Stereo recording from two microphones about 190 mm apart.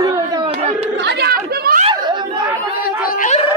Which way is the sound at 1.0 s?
55° right (ahead or behind).